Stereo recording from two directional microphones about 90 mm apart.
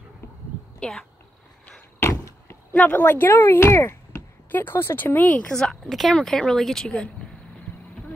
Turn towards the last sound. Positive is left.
turn(degrees=5)  # may be behind; listen again after turning